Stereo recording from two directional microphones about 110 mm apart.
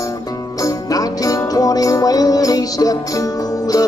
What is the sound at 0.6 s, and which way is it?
Music, 35° left (ahead or behind).